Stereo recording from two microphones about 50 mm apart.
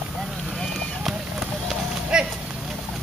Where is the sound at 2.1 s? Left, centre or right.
Centre.